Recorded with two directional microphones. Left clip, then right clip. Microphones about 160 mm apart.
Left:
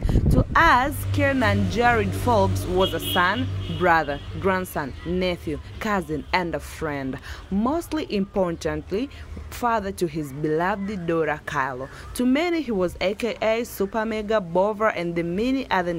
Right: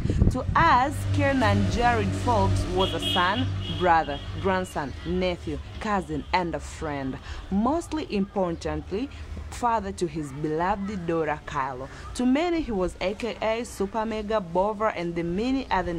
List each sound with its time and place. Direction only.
0.0 s a woman's voice: 15° left (ahead or behind)